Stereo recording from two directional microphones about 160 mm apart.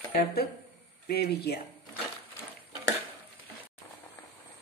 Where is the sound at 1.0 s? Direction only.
90° left.